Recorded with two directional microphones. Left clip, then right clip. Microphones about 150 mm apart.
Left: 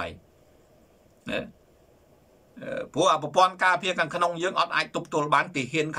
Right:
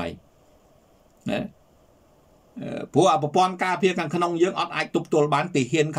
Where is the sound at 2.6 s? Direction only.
30° right (ahead or behind).